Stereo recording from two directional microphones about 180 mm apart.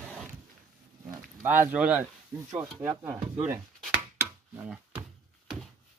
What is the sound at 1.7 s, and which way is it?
Speech, 10° right (ahead or behind).